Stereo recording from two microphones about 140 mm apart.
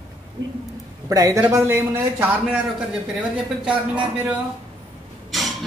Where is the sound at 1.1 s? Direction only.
25° right (ahead or behind).